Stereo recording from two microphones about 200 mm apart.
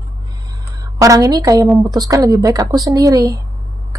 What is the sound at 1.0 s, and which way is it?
A woman's voice, 15° right (ahead or behind).